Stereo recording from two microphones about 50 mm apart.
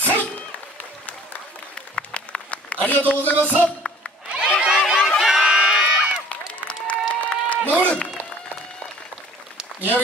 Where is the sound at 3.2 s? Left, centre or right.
Left.